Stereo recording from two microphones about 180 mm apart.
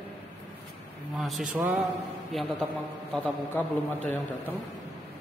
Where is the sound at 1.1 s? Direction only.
Centre (ahead or behind).